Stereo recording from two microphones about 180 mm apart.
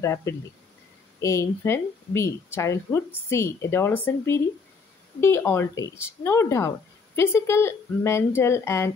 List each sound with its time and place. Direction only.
0.0 s speech: 15° left (ahead or behind)